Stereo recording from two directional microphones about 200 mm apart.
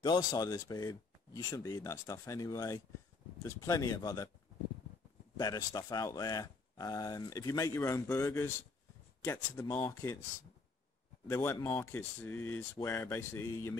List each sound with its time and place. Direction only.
0.0 s speech: 20° left (ahead or behind)
5.4 s speech: 20° left (ahead or behind)
11.2 s speech: 10° left (ahead or behind)